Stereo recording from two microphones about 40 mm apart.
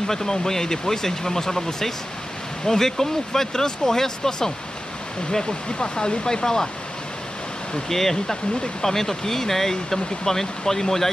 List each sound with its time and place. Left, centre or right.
0.0 s speech: centre
7.9 s speech: centre